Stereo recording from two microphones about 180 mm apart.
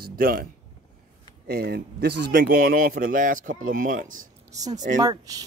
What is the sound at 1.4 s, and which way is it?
A man's voice, 60° right (ahead or behind).